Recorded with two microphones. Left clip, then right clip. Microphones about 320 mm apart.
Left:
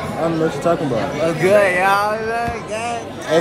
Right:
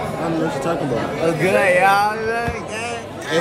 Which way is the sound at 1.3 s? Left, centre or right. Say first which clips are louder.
Left 2 dB; centre.